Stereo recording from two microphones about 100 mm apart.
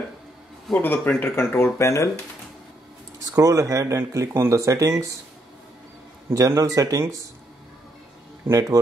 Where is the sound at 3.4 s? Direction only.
35° right (ahead or behind).